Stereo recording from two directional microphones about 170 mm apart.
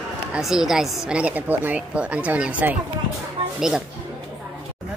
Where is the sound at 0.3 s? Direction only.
Centre (ahead or behind).